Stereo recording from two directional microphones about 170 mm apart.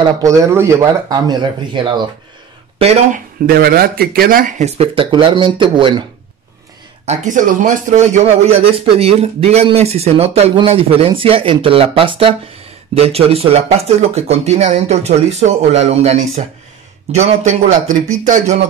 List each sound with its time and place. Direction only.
0.0 s speech: 20° right (ahead or behind)
2.8 s speech: 40° right (ahead or behind)
3.4 s speech: 60° right (ahead or behind); by 6.0 s 30° right (ahead or behind)
7.1 s speech: 45° right (ahead or behind)
18.0 s speech: 20° right (ahead or behind)